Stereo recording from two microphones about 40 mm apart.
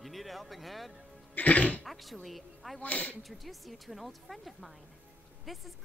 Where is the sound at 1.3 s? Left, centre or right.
Left.